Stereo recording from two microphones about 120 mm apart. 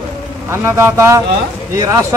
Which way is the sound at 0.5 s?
20° right (ahead or behind).